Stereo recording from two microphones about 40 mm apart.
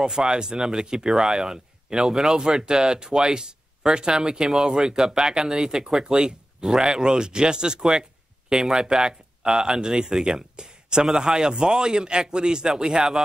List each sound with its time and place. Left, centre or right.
0.3 s speech: centre